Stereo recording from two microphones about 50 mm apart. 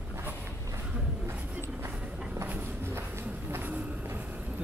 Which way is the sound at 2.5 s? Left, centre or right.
Right.